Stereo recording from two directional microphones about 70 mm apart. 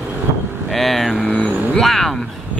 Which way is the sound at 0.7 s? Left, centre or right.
Centre.